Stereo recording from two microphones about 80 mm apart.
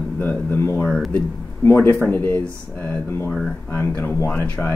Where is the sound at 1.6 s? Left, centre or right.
Left.